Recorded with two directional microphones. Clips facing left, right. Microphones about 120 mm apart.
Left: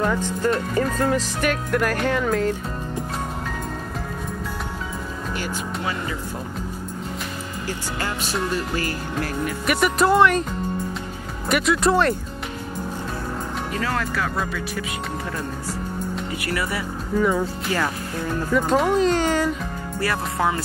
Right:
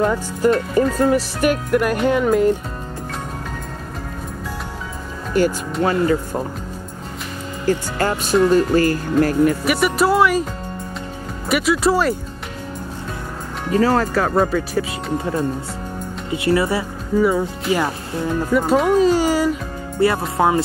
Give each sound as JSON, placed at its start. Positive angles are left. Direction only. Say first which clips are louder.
{"t": 0.0, "sound": "speech", "louder": "right 4 dB", "side_deg": -10}
{"t": 5.3, "sound": "speech", "louder": "right 12 dB", "side_deg": -45}
{"t": 7.6, "sound": "speech", "louder": "right 10 dB", "side_deg": -45}
{"t": 9.7, "sound": "speech", "louder": "right 2 dB", "side_deg": -5}
{"t": 13.7, "sound": "speech", "louder": "right 11 dB", "side_deg": -30}
{"t": 16.3, "sound": "speech", "louder": "right 13 dB", "side_deg": -25}
{"t": 17.2, "sound": "speech", "louder": "right 4 dB", "side_deg": -10}
{"t": 20.0, "sound": "speech", "louder": "right 7 dB", "side_deg": -25}